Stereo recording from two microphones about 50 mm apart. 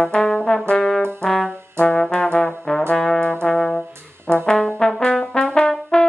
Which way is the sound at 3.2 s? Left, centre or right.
Left.